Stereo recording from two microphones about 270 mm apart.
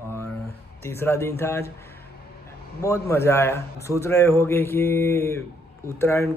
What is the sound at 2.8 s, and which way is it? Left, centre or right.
A man's voice, centre.